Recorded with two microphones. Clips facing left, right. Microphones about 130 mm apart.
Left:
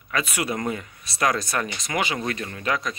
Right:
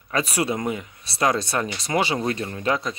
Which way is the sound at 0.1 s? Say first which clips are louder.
Right 3 dB; 35° right (ahead or behind).